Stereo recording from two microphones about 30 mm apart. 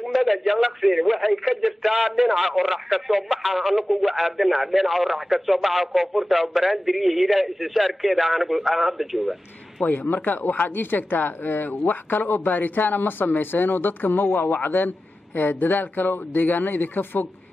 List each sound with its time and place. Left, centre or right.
0.1 s speech: centre
9.8 s a woman's voice: left